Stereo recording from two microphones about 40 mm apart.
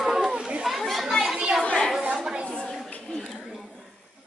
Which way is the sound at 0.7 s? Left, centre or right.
Centre.